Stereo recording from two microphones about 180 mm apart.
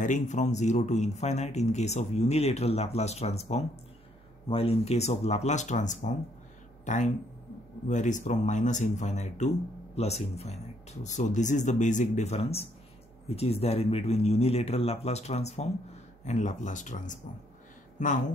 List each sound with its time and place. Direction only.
0.0 s speech: 40° left (ahead or behind)
6.8 s a sound: 40° left (ahead or behind)
7.9 s speech: 40° left (ahead or behind)